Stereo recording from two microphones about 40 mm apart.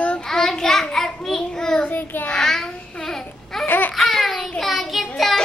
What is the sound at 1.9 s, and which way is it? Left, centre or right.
Child singing, left.